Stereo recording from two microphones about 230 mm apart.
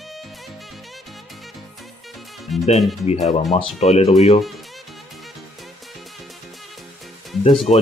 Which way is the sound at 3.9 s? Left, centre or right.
Left.